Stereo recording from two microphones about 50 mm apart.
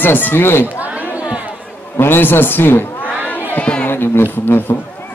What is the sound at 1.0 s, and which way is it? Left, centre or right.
Chatter, right.